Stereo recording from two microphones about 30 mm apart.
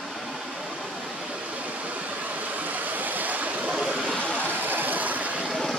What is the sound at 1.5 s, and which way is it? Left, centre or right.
Waterfall, right.